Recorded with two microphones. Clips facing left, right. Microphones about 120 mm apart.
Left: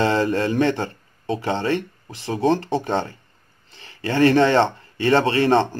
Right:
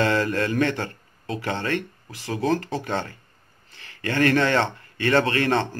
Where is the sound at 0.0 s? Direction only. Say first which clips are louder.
Left 3 dB; 20° left (ahead or behind).